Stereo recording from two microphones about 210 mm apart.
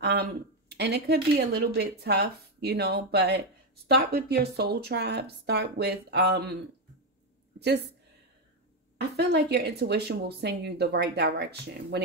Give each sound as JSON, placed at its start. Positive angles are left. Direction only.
{"t": 0.0, "sound": "a woman's voice", "side_deg": -55}
{"t": 9.1, "sound": "speech", "side_deg": -50}